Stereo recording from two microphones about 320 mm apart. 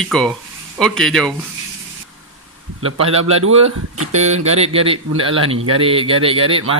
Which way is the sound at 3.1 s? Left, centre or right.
Centre.